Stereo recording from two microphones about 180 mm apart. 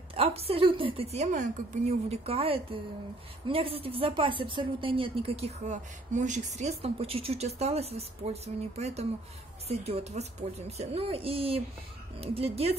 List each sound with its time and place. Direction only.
0.1 s a woman's voice: 35° right (ahead or behind)